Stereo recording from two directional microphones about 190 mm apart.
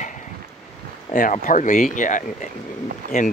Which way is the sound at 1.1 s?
45° left (ahead or behind).